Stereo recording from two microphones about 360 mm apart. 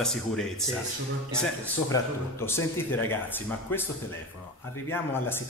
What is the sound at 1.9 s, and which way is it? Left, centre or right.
A man's voice, centre.